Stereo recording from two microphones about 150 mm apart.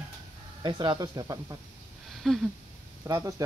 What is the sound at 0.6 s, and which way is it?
Speech, 30° right (ahead or behind).